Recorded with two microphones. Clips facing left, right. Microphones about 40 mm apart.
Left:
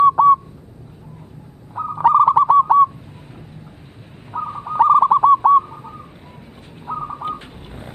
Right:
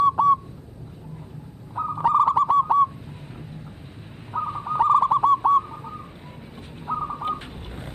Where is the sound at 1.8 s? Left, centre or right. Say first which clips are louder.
Left 2 dB; centre.